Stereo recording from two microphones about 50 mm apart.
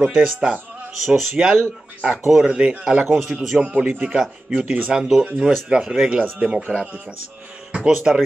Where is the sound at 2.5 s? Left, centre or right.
Right.